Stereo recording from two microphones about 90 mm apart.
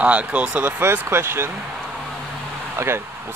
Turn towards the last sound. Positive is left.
turn(degrees=-30)  # may be behind; listen again after turning